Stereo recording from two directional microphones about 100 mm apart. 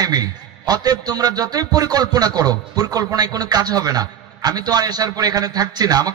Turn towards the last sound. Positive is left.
turn(degrees=-40)  # may be behind; listen again after turning